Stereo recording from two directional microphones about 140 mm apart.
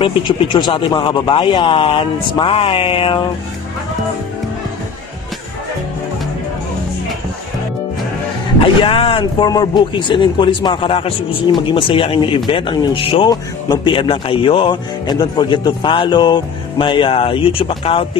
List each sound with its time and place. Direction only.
0.0 s speech: 40° left (ahead or behind)
8.5 s speech: 40° left (ahead or behind)